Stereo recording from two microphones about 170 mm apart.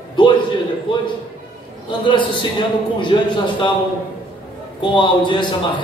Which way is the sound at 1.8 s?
30° left (ahead or behind).